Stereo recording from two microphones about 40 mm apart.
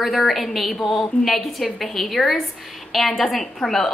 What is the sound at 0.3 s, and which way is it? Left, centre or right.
A woman's voice, centre.